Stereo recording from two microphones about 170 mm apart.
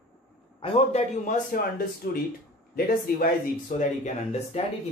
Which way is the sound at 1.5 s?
55° left (ahead or behind).